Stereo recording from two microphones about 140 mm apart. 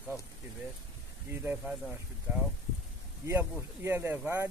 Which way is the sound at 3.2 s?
20° right (ahead or behind).